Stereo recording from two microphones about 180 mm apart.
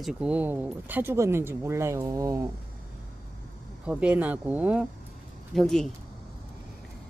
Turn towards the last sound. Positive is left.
turn(degrees=0)  # may be behind; listen again after turning